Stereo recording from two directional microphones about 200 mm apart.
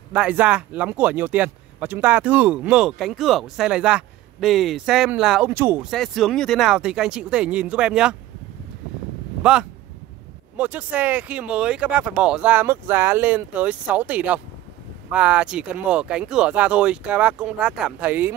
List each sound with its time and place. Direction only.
0.1 s speech: 5° right (ahead or behind)
9.4 s speech: 5° right (ahead or behind)